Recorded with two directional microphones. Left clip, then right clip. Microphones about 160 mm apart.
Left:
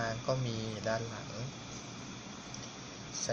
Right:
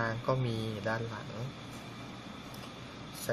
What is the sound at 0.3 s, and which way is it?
Speech, 30° right (ahead or behind).